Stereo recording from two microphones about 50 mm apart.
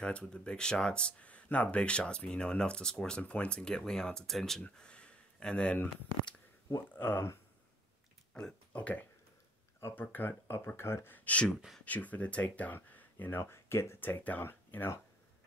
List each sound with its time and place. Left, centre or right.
0.0 s speech: centre
4.7 s a sound: centre
7.0 s speech: left
8.3 s a sound: centre
8.7 s speech: left
9.9 s speech: left
10.8 s speech: left
11.1 s speech: left
12.9 s a sound: left
13.4 s speech: left
13.9 s speech: left
14.4 s speech: left